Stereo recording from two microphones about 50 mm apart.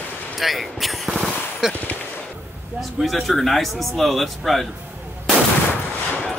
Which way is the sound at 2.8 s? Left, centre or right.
Centre.